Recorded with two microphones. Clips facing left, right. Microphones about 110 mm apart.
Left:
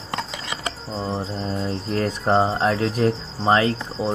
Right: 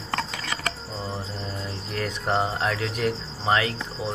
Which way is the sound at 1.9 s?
35° left (ahead or behind).